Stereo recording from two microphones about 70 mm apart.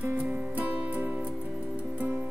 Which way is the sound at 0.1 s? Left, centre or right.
Right.